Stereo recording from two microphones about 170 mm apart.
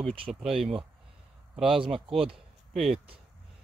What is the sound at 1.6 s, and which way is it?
Speech, 30° right (ahead or behind).